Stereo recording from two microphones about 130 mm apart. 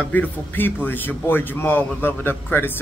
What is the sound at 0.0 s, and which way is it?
A man's voice, 15° left (ahead or behind).